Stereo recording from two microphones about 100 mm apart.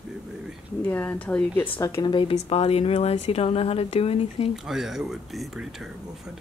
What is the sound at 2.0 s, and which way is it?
Speech, 60° left (ahead or behind).